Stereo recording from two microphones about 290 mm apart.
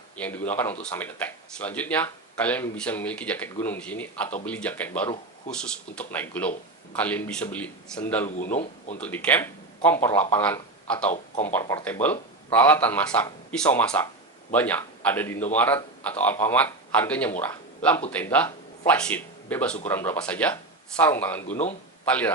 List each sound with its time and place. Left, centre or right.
0.2 s speech: centre
21.5 s speech: left
22.0 s speech: centre